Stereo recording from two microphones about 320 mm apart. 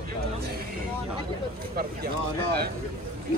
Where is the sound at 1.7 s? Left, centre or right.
Right.